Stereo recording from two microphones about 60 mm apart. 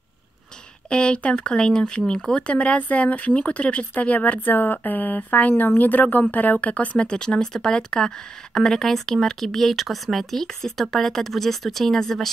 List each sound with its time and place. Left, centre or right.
0.8 s speech: centre